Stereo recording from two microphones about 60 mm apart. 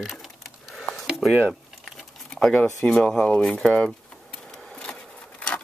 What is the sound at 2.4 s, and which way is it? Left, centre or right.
Speech, centre.